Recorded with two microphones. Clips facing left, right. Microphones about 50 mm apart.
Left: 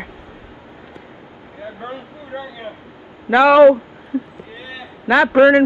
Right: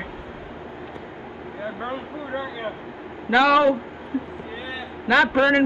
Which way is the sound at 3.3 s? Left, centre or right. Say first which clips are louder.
Left 7 dB; left.